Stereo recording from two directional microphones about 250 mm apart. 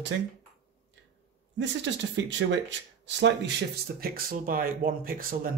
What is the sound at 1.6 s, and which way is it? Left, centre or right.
Speech, right.